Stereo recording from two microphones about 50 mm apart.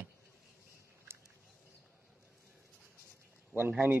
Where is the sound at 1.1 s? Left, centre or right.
Right.